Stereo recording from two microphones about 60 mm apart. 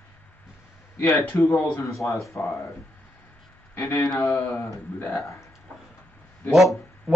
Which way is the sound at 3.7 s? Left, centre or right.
Left.